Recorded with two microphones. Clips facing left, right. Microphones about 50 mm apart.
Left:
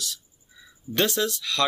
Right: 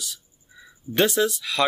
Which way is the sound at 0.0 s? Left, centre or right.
Centre.